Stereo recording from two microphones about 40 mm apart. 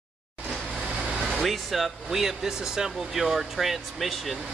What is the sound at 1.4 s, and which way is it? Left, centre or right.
Speech, centre.